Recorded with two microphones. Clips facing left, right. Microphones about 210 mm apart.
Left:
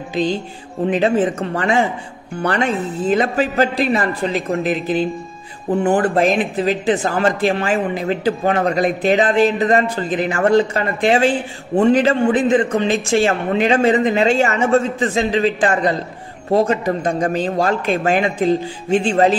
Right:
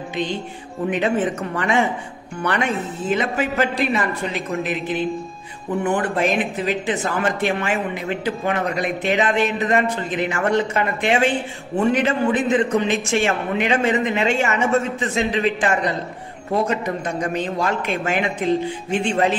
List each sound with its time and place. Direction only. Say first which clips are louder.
0.1 s a man's voice: left 6 dB; 35° left (ahead or behind)